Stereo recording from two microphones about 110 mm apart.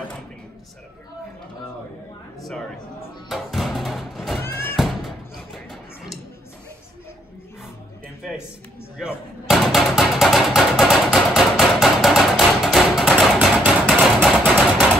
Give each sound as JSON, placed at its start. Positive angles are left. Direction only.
{"t": 3.3, "sound": "music", "side_deg": 0}
{"t": 4.4, "sound": "neigh", "side_deg": 20}
{"t": 4.7, "sound": "music", "side_deg": 0}
{"t": 8.2, "sound": "music", "side_deg": -5}
{"t": 9.5, "sound": "music", "side_deg": -5}
{"t": 13.2, "sound": "a sound", "side_deg": -5}